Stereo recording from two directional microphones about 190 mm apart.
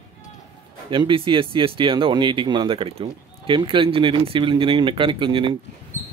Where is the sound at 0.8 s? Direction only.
25° right (ahead or behind).